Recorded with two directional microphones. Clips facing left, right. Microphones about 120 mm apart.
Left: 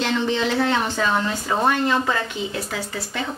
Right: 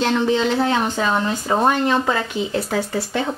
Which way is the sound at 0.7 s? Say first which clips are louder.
Right 2 dB; 15° right (ahead or behind).